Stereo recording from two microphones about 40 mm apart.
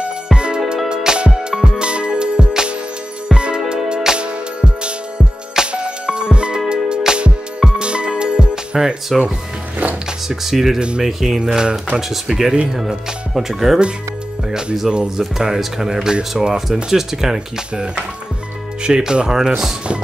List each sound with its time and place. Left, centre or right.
0.0 s music: right
10.2 s speech: centre
14.9 s speech: right
15.3 s speech: centre
18.9 s speech: right